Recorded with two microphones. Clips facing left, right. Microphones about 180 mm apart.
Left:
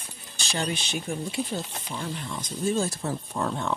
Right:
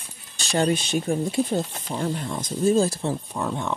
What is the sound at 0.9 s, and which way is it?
Speech, 40° right (ahead or behind).